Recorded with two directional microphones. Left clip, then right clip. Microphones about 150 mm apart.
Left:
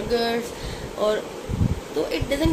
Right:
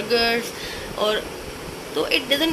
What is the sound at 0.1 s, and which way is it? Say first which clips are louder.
Speech: right 3 dB; 15° left (ahead or behind).